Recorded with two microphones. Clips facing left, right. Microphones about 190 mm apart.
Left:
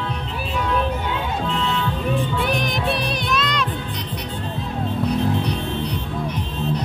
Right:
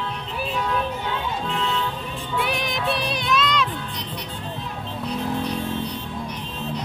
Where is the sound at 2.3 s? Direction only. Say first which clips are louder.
Left 3 dB; 5° right (ahead or behind).